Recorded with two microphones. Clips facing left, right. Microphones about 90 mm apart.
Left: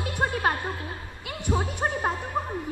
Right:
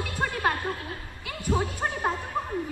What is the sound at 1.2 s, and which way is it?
Speech, 25° left (ahead or behind).